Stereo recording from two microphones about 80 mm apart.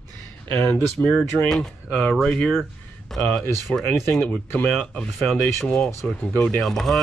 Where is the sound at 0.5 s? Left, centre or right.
Left.